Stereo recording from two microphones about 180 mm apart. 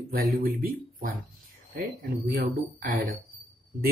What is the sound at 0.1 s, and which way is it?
Speech, 55° right (ahead or behind).